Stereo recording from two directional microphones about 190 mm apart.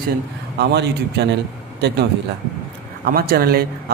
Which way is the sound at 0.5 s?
60° right (ahead or behind).